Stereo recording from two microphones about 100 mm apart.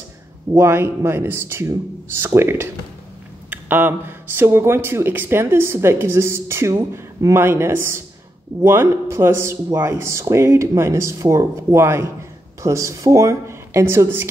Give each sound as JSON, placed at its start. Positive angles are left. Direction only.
{"t": 0.6, "sound": "speech", "side_deg": -25}